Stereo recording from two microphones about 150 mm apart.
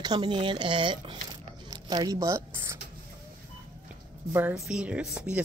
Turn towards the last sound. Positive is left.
turn(degrees=-5)  # may be behind; listen again after turning